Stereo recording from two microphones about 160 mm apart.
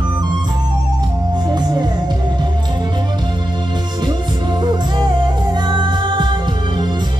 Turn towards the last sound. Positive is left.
turn(degrees=-30)  # may be behind; listen again after turning